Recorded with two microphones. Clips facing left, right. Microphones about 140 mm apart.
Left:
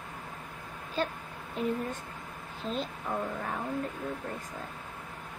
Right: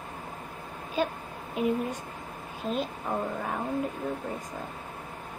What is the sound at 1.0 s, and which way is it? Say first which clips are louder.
A woman's voice: right 3 dB; 15° right (ahead or behind).